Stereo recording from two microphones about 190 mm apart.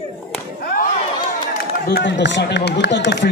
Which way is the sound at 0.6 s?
50° left (ahead or behind).